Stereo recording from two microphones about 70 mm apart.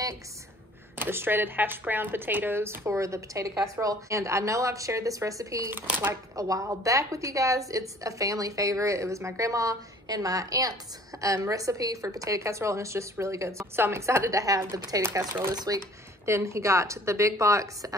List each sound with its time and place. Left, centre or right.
0.9 s a woman's voice: right
5.7 s speech: right
6.3 s a woman's voice: right
15.0 s speech: right
15.5 s speech: right
16.3 s a woman's voice: right